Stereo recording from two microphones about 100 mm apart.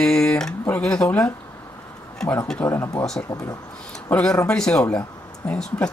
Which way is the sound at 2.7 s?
25° left (ahead or behind).